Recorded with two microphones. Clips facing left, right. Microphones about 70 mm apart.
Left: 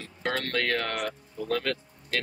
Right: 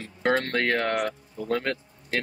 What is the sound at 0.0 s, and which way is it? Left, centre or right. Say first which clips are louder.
Speech: right 6 dB; right.